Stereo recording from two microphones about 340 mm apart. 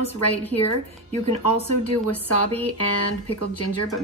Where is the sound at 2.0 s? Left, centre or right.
Left.